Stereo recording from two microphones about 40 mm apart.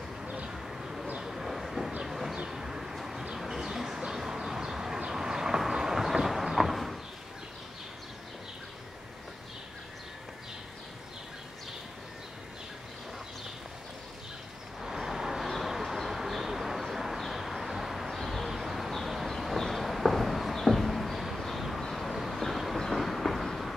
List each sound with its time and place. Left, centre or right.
0.5 s bird: centre
1.2 s vehicle: centre
2.0 s a sound: centre
2.5 s vehicle: centre
3.3 s bird: centre
4.1 s vehicle: centre
5.6 s a sound: centre
14.8 s vehicle: centre
15.4 s a sound: centre
15.7 s vehicle: centre
22.8 s train: centre